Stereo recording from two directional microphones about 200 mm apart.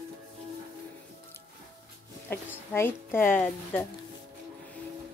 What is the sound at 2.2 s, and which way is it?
A woman's voice, 10° left (ahead or behind).